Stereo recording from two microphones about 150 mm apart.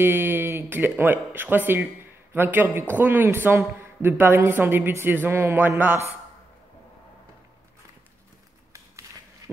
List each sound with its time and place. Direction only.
0.0 s a man's voice: 15° right (ahead or behind)